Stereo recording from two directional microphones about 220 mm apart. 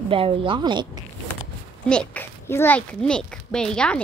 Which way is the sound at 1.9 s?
5° left (ahead or behind).